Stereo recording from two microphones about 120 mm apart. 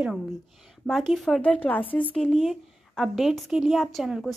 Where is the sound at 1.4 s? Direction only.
10° left (ahead or behind).